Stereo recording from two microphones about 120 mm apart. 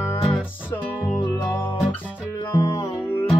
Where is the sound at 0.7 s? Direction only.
15° left (ahead or behind).